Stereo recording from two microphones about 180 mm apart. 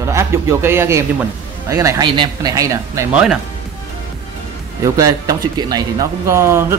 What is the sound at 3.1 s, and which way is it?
Speech, 5° right (ahead or behind).